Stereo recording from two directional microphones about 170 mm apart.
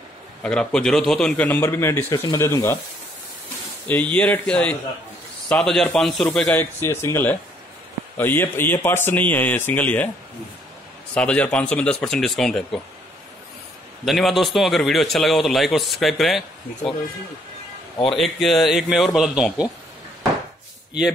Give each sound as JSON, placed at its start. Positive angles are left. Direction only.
{"t": 0.4, "sound": "a man's voice", "side_deg": 5}
{"t": 3.8, "sound": "a man's voice", "side_deg": 10}
{"t": 11.1, "sound": "a man's voice", "side_deg": 5}
{"t": 14.0, "sound": "a man's voice", "side_deg": 0}
{"t": 18.1, "sound": "a man's voice", "side_deg": 0}